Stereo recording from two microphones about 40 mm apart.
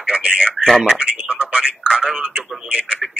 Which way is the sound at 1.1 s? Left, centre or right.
Right.